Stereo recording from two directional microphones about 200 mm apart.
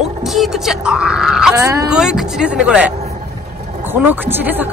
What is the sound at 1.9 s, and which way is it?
Music, 5° right (ahead or behind).